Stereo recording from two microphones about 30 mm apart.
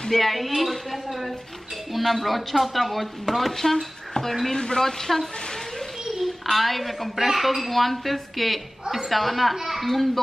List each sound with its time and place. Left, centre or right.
0.1 s speech: centre; by 4.8 s left
4.8 s a woman's voice: centre
6.1 s a woman's voice: centre